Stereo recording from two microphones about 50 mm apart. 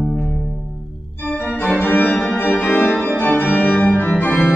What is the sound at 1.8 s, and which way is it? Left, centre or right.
Organ, left.